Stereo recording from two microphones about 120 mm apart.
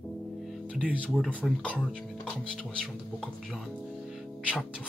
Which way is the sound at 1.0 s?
10° left (ahead or behind).